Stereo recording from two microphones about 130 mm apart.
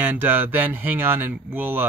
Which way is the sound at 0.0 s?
15° right (ahead or behind).